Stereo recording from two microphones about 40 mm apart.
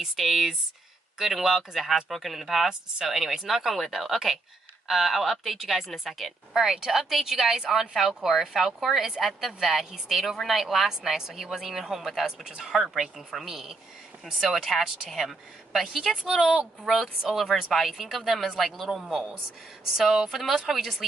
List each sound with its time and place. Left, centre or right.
0.0 s speech: centre
6.5 s speech: centre
10.9 s speech: centre
12.4 s speech: centre
12.7 s speech: centre
17.2 s speech: centre